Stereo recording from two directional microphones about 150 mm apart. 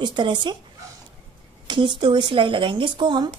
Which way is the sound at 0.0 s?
30° right (ahead or behind).